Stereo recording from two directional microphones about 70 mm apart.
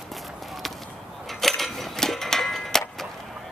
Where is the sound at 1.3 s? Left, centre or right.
Centre.